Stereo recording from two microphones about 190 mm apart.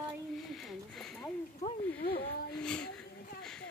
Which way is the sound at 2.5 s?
5° left (ahead or behind).